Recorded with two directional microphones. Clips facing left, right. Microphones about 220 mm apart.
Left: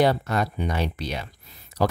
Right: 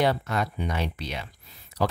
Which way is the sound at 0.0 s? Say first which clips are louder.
Left 3 dB; 40° left (ahead or behind).